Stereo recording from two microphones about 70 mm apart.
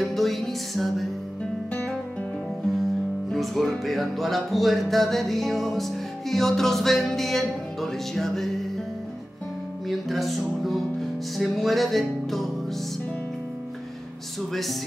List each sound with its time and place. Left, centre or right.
0.0 s music: centre
1.7 s music: centre
2.8 s music: centre
9.8 s music: centre
14.5 s music: centre